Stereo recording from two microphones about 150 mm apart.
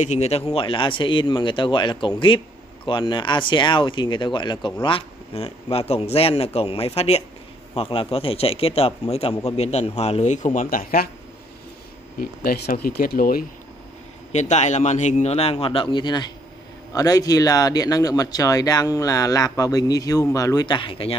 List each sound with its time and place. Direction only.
0.0 s speech: 50° left (ahead or behind); by 11.1 s 70° left (ahead or behind)
12.2 s speech: 90° left; by 13.5 s 70° left (ahead or behind)
14.3 s speech: 50° left (ahead or behind)